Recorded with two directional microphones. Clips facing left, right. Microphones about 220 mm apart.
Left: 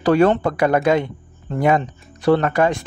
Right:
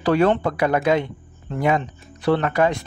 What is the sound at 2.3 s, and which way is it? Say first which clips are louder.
Speech: left 3 dB; 45° left (ahead or behind).